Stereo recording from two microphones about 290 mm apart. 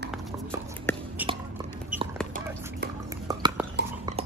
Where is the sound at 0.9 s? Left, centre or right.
Centre.